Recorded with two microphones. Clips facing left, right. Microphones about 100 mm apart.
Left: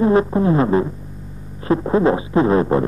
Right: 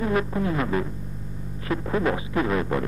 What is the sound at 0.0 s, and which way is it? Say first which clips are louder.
Music: left 9 dB; 30° left (ahead or behind).